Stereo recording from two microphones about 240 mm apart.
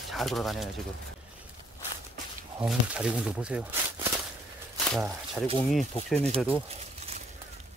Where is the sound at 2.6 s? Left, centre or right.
Centre.